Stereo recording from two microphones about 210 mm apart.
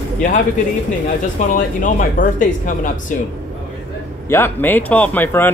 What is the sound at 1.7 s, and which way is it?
Speech, 40° left (ahead or behind).